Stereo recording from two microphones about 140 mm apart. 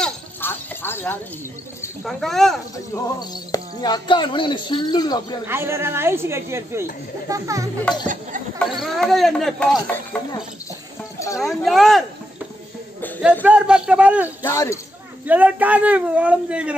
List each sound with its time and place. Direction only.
0.0 s music: 15° left (ahead or behind)
2.0 s speech: centre (ahead or behind)
2.7 s speech: 25° left (ahead or behind)
5.5 s speech: 20° right (ahead or behind)
8.5 s speech: centre (ahead or behind)
11.3 s speech: centre (ahead or behind)
13.2 s speech: 10° right (ahead or behind)
14.4 s speech: 20° left (ahead or behind)
15.2 s speech: 10° right (ahead or behind)